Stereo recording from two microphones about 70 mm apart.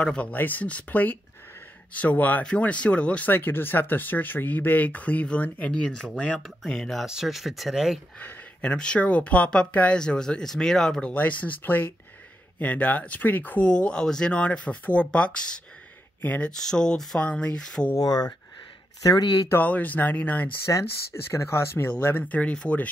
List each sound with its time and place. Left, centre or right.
0.0 s speech: centre
3.3 s speech: left; by 7.1 s centre
7.1 s speech: centre
8.2 s speech: left
11.1 s speech: left
17.9 s speech: left
19.0 s speech: left
19.6 s speech: left
20.6 s speech: left
22.0 s speech: left